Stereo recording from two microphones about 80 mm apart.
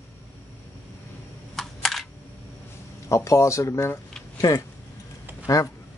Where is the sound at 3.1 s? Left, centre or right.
Left.